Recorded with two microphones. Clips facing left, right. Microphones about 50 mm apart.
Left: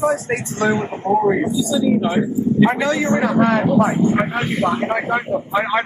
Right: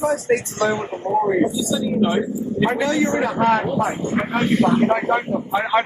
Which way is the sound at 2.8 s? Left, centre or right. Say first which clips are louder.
Even; left.